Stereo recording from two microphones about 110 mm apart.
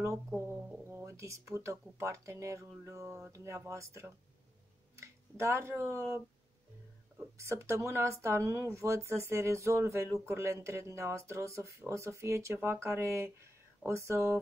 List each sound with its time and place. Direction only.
0.8 s speech: 25° right (ahead or behind)
7.3 s speech: 25° right (ahead or behind)